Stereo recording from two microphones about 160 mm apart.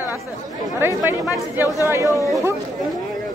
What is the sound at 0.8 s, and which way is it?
Speech, 15° right (ahead or behind).